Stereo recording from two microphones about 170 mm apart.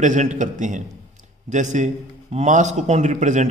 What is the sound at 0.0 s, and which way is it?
A man's voice, 45° right (ahead or behind).